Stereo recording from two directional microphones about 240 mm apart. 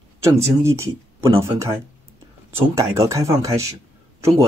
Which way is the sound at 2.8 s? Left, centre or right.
Centre.